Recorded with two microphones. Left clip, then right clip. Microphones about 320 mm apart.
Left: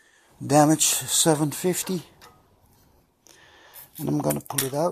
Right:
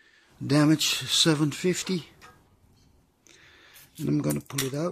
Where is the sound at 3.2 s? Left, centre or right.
Centre.